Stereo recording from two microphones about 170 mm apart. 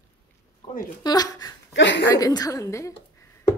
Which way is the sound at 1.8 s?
90° left.